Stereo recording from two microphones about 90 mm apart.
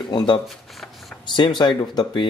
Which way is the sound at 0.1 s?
55° left (ahead or behind).